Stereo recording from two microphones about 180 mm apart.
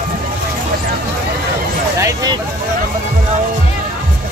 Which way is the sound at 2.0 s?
20° right (ahead or behind).